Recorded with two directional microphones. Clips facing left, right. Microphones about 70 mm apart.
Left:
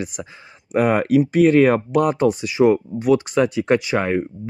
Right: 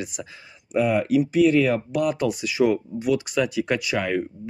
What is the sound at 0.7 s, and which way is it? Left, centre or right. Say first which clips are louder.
Speech: left 4 dB; left.